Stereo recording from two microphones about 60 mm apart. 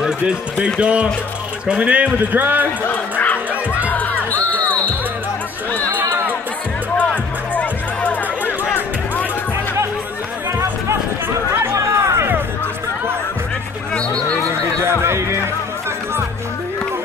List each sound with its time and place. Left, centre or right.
0.0 s a man's voice: centre
2.1 s a man's voice: right
3.9 s music: left
5.9 s run: right
7.0 s music: left
11.7 s music: right
13.9 s a sound: centre
14.8 s music: right